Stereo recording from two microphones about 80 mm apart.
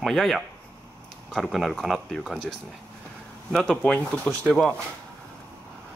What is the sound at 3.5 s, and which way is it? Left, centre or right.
Speech, centre.